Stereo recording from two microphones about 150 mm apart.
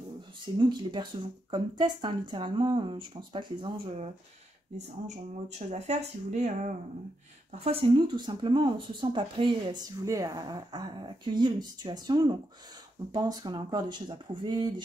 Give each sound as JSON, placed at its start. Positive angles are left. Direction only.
{"t": 0.6, "sound": "speech", "side_deg": -30}
{"t": 4.7, "sound": "speech", "side_deg": -50}
{"t": 10.0, "sound": "speech", "side_deg": -20}